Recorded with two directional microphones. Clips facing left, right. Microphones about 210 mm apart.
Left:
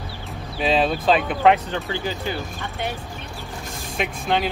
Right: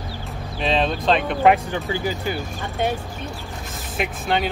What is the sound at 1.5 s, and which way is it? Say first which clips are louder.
Speech: right 1 dB; 10° right (ahead or behind).